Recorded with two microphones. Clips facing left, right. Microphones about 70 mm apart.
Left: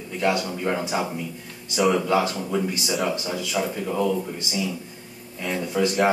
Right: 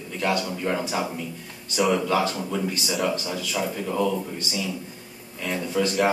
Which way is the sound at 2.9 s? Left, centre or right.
Centre.